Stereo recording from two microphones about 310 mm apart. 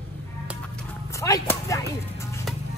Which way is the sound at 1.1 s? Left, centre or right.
Centre.